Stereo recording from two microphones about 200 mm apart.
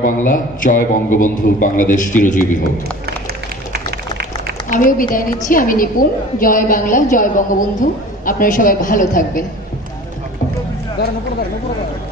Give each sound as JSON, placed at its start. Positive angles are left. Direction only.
{"t": 0.0, "sound": "a man's voice", "side_deg": 40}
{"t": 3.7, "sound": "a sound", "side_deg": -50}
{"t": 4.6, "sound": "a woman's voice", "side_deg": 40}